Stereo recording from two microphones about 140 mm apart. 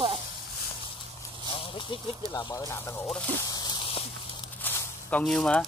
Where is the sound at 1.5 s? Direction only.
40° left (ahead or behind).